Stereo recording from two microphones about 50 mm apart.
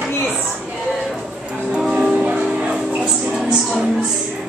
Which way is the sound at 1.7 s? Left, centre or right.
Centre.